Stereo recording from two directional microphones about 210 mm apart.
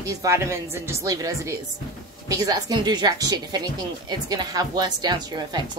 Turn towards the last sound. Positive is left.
turn(degrees=-20)  # may be behind; listen again after turning